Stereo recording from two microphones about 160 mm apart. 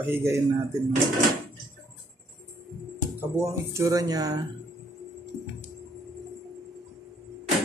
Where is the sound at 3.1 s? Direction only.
20° right (ahead or behind).